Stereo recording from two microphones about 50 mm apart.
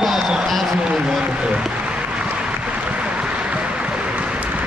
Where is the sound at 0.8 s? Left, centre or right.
Centre.